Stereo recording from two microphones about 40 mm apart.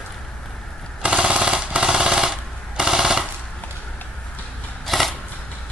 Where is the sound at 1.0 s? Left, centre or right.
Right.